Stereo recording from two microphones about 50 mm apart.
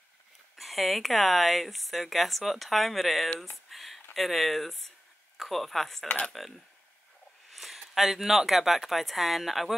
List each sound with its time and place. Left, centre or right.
0.6 s speech: centre
6.0 s cutlery: left
6.3 s speech: centre